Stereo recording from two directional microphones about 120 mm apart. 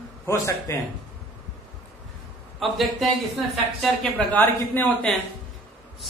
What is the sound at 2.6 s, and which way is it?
Speech, centre (ahead or behind).